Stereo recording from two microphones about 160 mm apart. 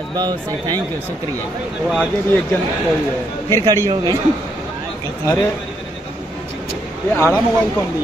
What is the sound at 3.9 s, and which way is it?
Speech, 25° right (ahead or behind).